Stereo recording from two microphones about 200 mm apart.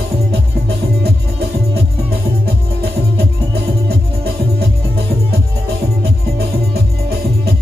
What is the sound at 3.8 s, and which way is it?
Music, 50° right (ahead or behind).